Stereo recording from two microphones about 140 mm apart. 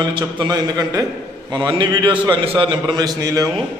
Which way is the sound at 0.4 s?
30° right (ahead or behind).